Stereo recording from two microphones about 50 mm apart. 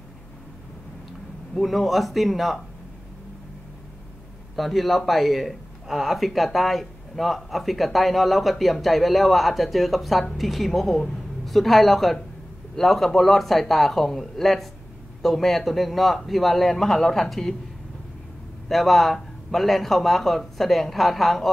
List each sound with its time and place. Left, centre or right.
1.5 s speech: centre
4.6 s speech: centre
18.7 s speech: centre